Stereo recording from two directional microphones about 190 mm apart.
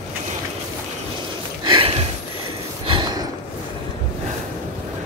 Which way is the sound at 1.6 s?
25° right (ahead or behind).